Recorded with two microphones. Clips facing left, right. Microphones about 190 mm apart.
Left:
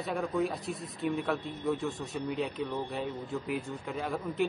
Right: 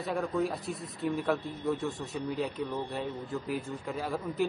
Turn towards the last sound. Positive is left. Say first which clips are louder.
# even
turn(degrees=0)  # may be behind; listen again after turning